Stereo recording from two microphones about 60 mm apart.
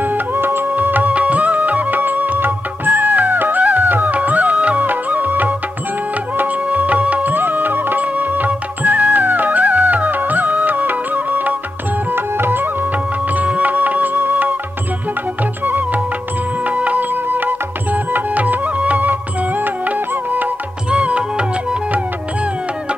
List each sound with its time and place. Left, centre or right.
0.0 s music: right
13.3 s music: right
15.6 s music: right
20.9 s music: centre